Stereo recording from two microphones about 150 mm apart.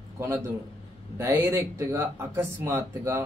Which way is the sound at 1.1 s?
15° right (ahead or behind).